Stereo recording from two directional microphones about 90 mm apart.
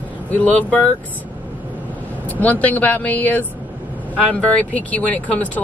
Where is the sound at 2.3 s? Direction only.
20° left (ahead or behind).